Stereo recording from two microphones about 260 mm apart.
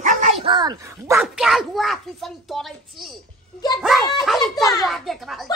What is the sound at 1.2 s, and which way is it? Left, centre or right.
A child's voice, centre.